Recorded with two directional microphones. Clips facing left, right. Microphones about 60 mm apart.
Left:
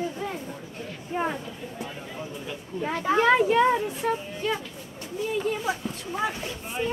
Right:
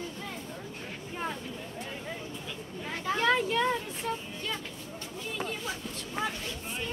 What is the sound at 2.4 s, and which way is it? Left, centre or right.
Speech, left.